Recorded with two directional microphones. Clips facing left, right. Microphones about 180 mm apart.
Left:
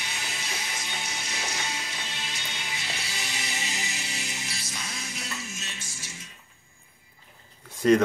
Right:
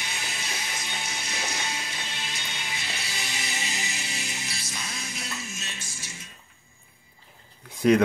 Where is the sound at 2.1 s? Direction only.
55° right (ahead or behind).